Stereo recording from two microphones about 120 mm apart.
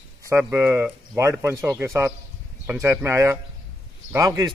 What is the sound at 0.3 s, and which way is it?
Speech, 20° right (ahead or behind).